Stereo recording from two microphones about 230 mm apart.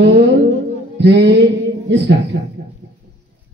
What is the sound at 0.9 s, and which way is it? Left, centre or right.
Speech, right.